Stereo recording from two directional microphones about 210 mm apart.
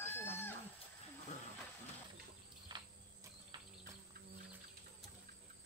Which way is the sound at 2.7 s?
20° right (ahead or behind).